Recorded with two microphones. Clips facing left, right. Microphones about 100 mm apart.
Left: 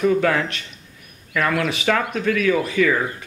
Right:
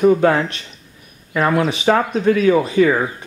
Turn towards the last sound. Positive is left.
turn(degrees=-30)  # may be behind; listen again after turning